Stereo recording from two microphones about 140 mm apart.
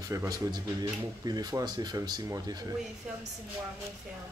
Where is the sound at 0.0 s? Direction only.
25° right (ahead or behind).